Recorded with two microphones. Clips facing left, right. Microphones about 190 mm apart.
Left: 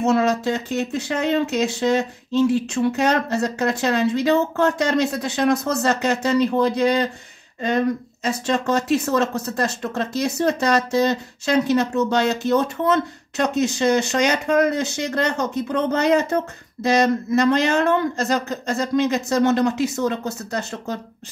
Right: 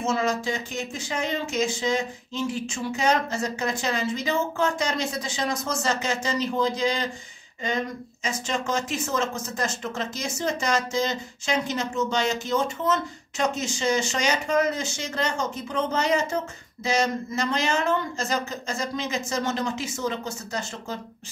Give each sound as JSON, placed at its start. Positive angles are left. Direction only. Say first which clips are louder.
{"t": 0.0, "sound": "speech", "louder": "left 7 dB", "side_deg": 65}